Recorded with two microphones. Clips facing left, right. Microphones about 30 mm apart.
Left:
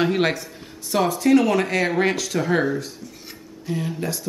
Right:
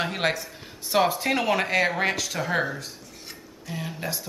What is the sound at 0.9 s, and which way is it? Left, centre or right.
Speech, right.